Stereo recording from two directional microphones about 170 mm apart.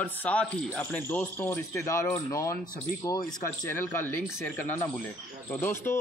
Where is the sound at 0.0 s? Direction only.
10° left (ahead or behind).